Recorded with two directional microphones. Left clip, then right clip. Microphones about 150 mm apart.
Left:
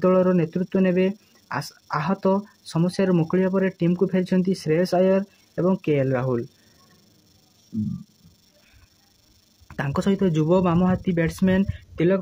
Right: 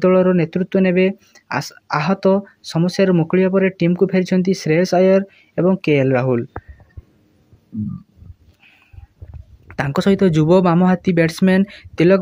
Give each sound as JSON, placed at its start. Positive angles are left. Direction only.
{"t": 0.0, "sound": "speech", "side_deg": -15}
{"t": 9.7, "sound": "speech", "side_deg": -20}